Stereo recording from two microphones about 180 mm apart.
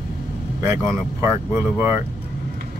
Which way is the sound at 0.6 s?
15° right (ahead or behind).